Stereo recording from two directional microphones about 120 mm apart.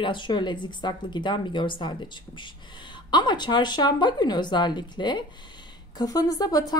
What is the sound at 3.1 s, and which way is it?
Speech, 40° left (ahead or behind).